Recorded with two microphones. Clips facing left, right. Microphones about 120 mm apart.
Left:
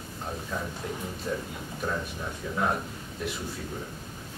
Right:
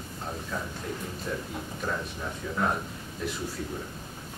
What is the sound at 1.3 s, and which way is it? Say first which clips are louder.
Speech: left 2 dB; 15° left (ahead or behind).